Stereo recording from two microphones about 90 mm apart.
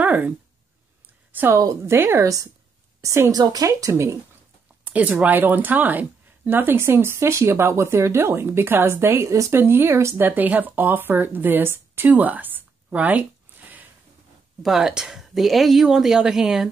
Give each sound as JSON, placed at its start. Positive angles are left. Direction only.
{"t": 0.0, "sound": "a sound", "side_deg": -20}
{"t": 1.5, "sound": "a woman's voice", "side_deg": -35}
{"t": 4.8, "sound": "speech", "side_deg": -15}
{"t": 10.2, "sound": "speech", "side_deg": -20}
{"t": 13.5, "sound": "a sound", "side_deg": -20}
{"t": 14.6, "sound": "speech", "side_deg": -5}